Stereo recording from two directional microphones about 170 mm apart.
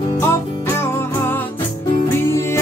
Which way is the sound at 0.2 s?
15° left (ahead or behind).